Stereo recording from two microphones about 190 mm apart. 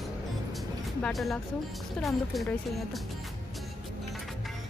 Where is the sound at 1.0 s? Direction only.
Centre (ahead or behind).